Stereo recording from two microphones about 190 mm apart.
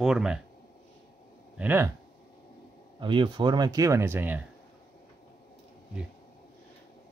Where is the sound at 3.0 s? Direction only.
25° right (ahead or behind).